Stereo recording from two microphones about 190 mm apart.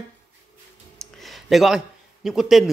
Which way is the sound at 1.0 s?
Centre (ahead or behind).